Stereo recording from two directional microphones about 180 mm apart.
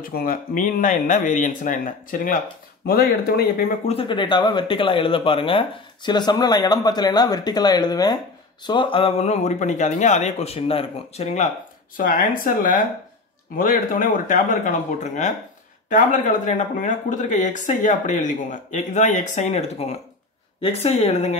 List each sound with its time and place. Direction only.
0.0 s speech: 55° left (ahead or behind)
3.8 s speech: 30° left (ahead or behind)
12.0 s speech: 50° left (ahead or behind)